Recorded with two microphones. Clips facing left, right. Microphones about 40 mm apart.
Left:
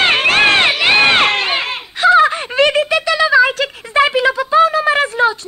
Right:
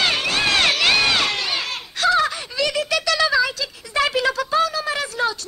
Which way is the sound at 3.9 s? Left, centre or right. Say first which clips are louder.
Left 7 dB; left.